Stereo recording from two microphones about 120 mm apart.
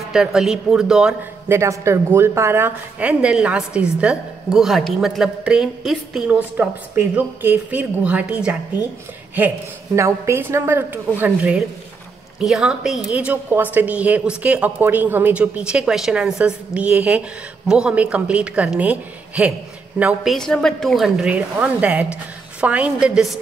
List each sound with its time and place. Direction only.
0.1 s a woman's voice: 5° right (ahead or behind)
1.5 s a woman's voice: 25° right (ahead or behind); by 6.3 s 5° right (ahead or behind)
6.5 s a woman's voice: 15° right (ahead or behind)
9.9 s a woman's voice: 25° right (ahead or behind); by 20.3 s 5° right (ahead or behind)
20.3 s a woman's voice: 5° left (ahead or behind)